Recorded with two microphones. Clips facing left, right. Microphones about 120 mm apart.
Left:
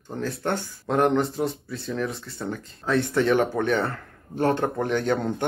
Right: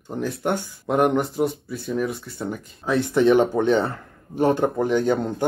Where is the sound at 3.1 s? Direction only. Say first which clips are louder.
Right 7 dB; 20° right (ahead or behind).